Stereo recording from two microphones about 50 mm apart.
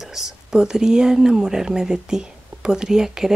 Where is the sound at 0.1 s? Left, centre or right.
Centre.